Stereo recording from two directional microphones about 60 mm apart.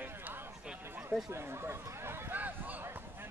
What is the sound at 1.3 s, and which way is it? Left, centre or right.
Speech, right.